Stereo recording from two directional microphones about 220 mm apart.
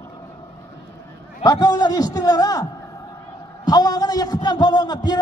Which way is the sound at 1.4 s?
20° left (ahead or behind).